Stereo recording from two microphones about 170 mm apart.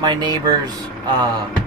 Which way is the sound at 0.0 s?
25° right (ahead or behind).